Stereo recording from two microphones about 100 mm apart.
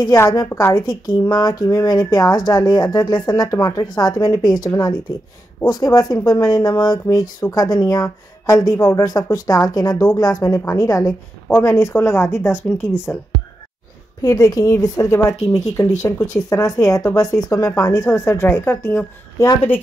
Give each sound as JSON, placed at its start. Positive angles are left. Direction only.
{"t": 0.0, "sound": "speech", "side_deg": 35}
{"t": 0.5, "sound": "speech", "side_deg": 20}
{"t": 0.7, "sound": "speech", "side_deg": 40}
{"t": 11.4, "sound": "speech", "side_deg": 25}
{"t": 14.2, "sound": "speech", "side_deg": 35}